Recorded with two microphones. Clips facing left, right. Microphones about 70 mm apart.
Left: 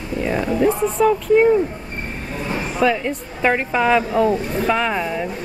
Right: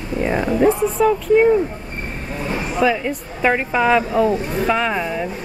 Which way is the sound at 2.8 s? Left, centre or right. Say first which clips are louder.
Even; centre.